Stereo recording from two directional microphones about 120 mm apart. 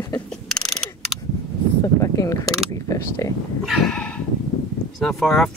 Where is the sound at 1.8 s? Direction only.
25° left (ahead or behind).